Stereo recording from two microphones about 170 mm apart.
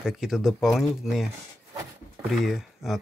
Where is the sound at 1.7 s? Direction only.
20° right (ahead or behind).